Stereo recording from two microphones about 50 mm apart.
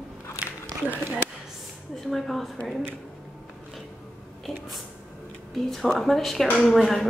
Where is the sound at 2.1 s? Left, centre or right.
Centre.